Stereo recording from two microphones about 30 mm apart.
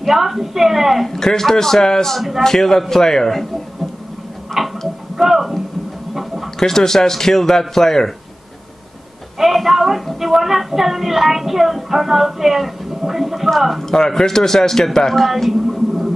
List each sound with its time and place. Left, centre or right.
0.0 s a woman's voice: centre
1.2 s a man's voice: centre
4.6 s tick-tock: centre
5.2 s music: centre
6.1 s a sound: centre
6.6 s a man's voice: centre
9.4 s a sound: centre
10.3 s a woman's voice: centre
13.8 s a man's voice: centre
15.2 s a woman's voice: centre